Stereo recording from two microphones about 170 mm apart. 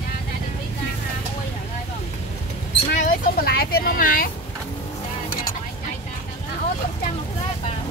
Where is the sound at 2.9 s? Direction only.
55° left (ahead or behind).